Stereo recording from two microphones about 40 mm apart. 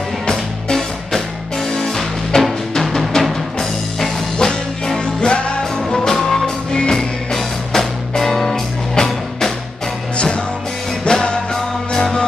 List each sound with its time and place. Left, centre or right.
0.3 s music: centre
4.4 s music: centre
5.8 s music: centre
10.1 s music: left
11.1 s music: centre